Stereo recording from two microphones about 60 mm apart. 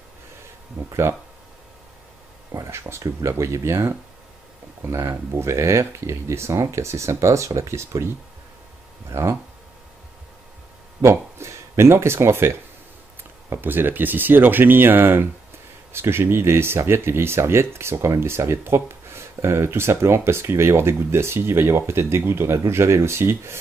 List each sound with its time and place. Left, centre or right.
1.1 s speech: right
2.7 s speech: right
9.1 s speech: right
11.0 s speech: right
13.5 s speech: right